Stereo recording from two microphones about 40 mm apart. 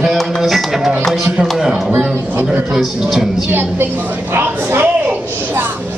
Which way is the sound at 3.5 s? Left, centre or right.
Right.